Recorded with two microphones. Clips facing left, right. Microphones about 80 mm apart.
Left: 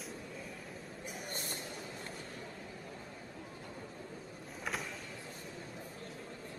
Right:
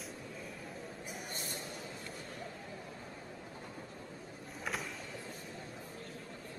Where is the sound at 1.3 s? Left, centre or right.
Left.